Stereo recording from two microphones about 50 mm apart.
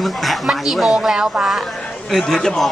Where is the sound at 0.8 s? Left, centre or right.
Centre.